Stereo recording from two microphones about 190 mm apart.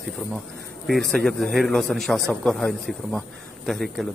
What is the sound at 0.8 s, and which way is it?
A man's voice, centre (ahead or behind).